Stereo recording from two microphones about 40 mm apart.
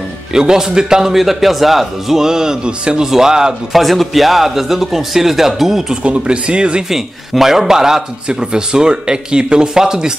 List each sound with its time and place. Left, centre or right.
0.3 s a man's voice: centre
1.1 s a man's voice: centre
3.7 s a man's voice: centre
6.0 s speech: right
6.9 s a man's voice: centre